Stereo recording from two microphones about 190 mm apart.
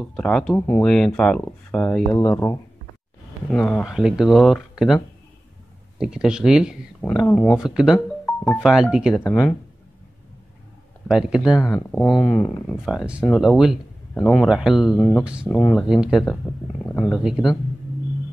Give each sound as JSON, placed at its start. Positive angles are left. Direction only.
{"t": 0.0, "sound": "speech", "side_deg": 5}
{"t": 9.2, "sound": "speech", "side_deg": 10}
{"t": 11.1, "sound": "speech", "side_deg": -5}
{"t": 11.7, "sound": "speech", "side_deg": 15}
{"t": 12.8, "sound": "speech", "side_deg": -5}
{"t": 15.0, "sound": "speech", "side_deg": 15}
{"t": 15.7, "sound": "speech", "side_deg": 0}